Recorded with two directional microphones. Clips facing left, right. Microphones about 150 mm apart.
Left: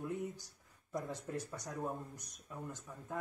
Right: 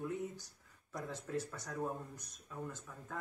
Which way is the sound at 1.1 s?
15° left (ahead or behind).